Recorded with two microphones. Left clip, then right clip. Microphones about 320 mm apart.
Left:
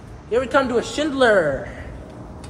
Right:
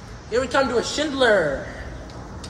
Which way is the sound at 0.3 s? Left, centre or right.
Left.